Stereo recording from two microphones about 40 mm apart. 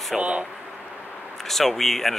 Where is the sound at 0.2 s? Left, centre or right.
Right.